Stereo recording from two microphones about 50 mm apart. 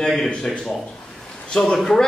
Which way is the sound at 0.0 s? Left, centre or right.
Centre.